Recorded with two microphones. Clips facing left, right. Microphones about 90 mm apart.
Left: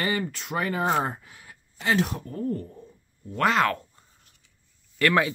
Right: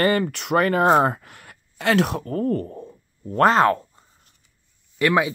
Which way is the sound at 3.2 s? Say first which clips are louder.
Right 6 dB; 40° right (ahead or behind).